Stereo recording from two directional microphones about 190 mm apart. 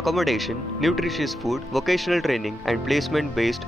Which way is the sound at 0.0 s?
Centre (ahead or behind).